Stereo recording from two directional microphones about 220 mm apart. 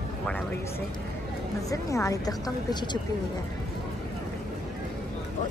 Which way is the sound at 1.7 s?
15° left (ahead or behind).